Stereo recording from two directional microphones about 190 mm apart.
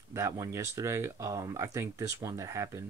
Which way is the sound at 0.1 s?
15° right (ahead or behind).